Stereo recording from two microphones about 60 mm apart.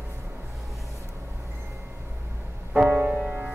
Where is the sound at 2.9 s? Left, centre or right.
Centre.